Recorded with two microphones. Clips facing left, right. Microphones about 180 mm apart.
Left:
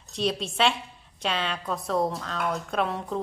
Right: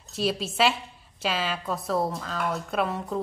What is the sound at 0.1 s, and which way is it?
A woman's voice, 5° right (ahead or behind).